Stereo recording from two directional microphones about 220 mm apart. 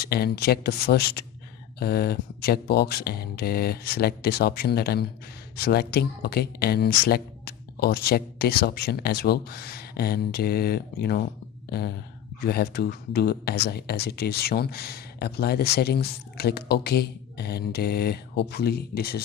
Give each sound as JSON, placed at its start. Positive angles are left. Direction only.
{"t": 0.0, "sound": "speech", "side_deg": 45}
{"t": 12.4, "sound": "speech", "side_deg": 45}